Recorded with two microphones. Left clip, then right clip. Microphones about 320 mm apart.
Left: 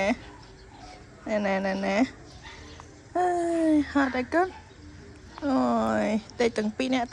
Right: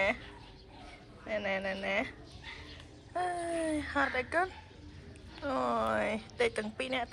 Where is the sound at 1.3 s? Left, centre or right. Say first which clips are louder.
Left 7 dB; left.